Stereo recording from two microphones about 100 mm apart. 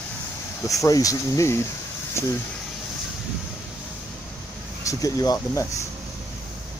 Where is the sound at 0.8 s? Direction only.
35° left (ahead or behind).